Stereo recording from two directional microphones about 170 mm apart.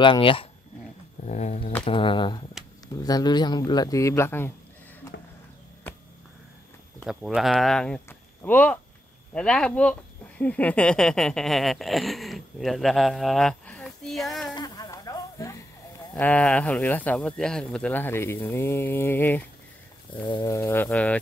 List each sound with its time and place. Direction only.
0.0 s speech: 30° left (ahead or behind)
1.2 s speech: 45° left (ahead or behind)
1.9 s speech: 30° left (ahead or behind); by 4.5 s 15° left (ahead or behind)
5.1 s a sound: 90° left
5.9 s a sound: 10° left (ahead or behind)
7.1 s speech: centre (ahead or behind)
14.5 s a sound: 25° left (ahead or behind)
16.2 s speech: 10° left (ahead or behind)
20.1 s speech: 30° left (ahead or behind)
20.4 s speech: 15° left (ahead or behind)